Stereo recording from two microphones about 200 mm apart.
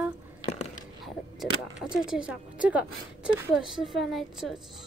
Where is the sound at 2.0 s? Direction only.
5° right (ahead or behind).